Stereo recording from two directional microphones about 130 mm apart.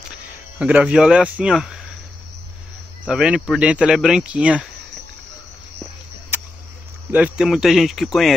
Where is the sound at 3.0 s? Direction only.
5° right (ahead or behind).